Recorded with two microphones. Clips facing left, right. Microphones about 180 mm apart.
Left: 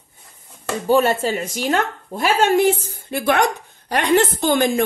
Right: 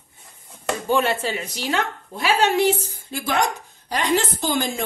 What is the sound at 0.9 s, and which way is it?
A woman's voice, 40° left (ahead or behind).